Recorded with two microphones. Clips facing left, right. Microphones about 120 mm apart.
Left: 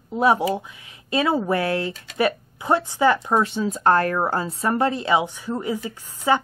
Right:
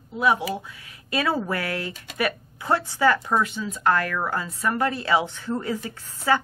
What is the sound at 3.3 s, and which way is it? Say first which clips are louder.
A woman's voice: left 4 dB; 35° left (ahead or behind).